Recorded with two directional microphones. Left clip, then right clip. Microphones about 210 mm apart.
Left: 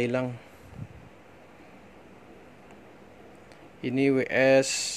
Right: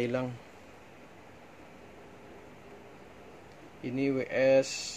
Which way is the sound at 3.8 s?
35° left (ahead or behind).